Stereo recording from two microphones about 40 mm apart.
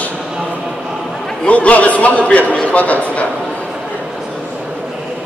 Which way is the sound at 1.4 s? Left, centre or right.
Left.